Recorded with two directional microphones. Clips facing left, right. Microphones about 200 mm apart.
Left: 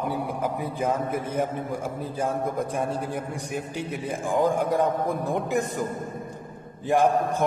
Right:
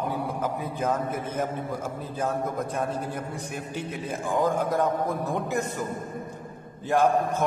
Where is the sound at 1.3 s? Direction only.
15° left (ahead or behind).